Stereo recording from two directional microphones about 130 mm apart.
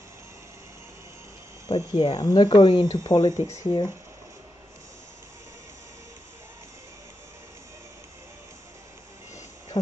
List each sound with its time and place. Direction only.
1.7 s speech: 45° left (ahead or behind)